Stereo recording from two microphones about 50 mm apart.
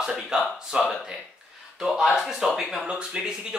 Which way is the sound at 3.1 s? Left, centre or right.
Centre.